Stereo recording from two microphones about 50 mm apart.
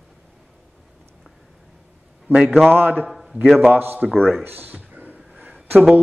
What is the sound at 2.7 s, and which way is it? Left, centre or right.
A man's voice, right.